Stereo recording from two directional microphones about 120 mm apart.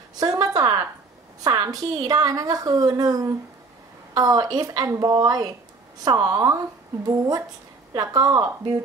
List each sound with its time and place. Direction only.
0.2 s a woman's voice: 30° right (ahead or behind)